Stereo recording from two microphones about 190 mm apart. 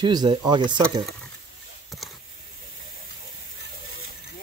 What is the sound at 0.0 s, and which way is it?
Speech, 25° right (ahead or behind).